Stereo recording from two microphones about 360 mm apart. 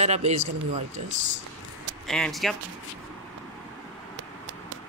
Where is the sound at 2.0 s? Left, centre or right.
Centre.